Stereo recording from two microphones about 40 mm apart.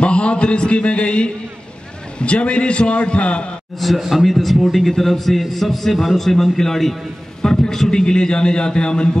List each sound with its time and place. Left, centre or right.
0.0 s a man's voice: left
4.0 s speech: centre
4.3 s a man's voice: centre; by 9.2 s left